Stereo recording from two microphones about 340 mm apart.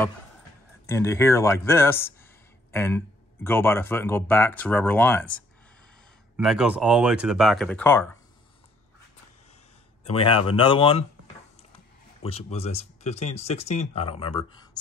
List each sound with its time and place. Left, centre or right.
0.8 s speech: centre
6.3 s speech: centre
10.0 s speech: centre
12.2 s speech: centre